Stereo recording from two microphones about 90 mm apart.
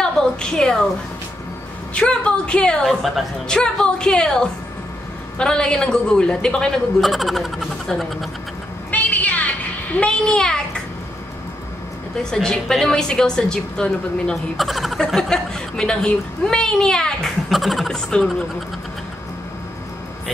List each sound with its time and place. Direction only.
0.0 s a sound: 10° left (ahead or behind)
2.0 s a woman's voice: 10° left (ahead or behind)
2.8 s a woman's voice: centre (ahead or behind)
8.9 s a sound: 15° left (ahead or behind)
9.9 s a woman's voice: 10° left (ahead or behind)
12.2 s a woman's voice: 5° left (ahead or behind)